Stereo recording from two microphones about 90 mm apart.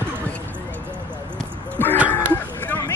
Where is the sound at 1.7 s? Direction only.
20° left (ahead or behind).